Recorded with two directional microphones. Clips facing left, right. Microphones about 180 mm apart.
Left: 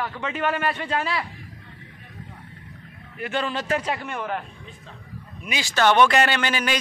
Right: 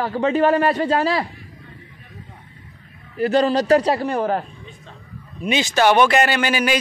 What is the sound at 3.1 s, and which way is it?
A man's voice, 35° right (ahead or behind).